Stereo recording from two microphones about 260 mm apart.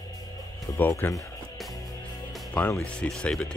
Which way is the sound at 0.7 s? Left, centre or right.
Centre.